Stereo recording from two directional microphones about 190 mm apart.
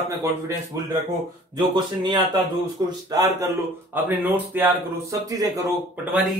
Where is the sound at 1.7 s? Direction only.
25° right (ahead or behind).